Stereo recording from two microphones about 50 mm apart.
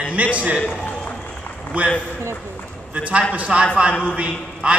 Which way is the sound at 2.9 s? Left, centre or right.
Right.